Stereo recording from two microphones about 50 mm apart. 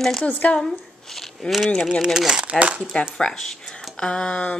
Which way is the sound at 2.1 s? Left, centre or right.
Centre.